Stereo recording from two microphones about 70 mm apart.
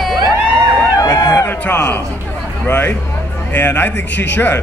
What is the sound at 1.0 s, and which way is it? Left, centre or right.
Speech, left.